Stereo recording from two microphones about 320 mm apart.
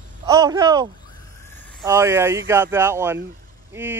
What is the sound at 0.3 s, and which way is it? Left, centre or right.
Speech, centre.